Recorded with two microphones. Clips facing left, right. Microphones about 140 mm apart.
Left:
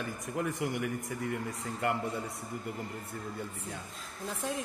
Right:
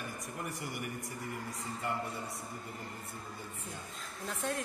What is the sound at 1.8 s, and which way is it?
Speech, 65° left (ahead or behind).